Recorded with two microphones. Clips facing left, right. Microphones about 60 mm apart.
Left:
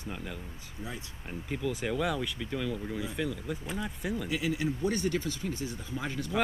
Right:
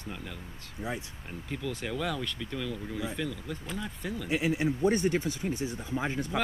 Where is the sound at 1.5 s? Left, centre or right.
Centre.